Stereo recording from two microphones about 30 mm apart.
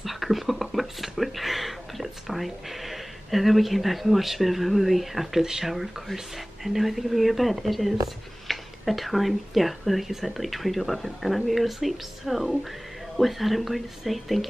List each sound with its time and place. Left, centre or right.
0.0 s a sound: centre
5.4 s speech: centre
5.7 s speech: centre